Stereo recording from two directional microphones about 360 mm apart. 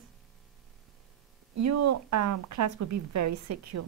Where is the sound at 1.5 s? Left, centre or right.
Right.